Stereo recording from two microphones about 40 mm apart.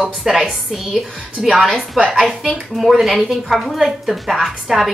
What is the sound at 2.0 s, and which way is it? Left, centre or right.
A woman's voice, centre.